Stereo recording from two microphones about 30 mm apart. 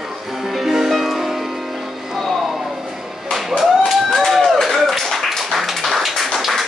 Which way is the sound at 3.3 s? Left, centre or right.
Centre.